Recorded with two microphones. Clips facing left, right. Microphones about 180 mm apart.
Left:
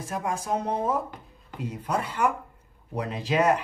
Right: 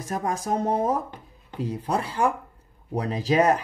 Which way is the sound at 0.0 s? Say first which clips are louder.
Right 2 dB; 40° right (ahead or behind).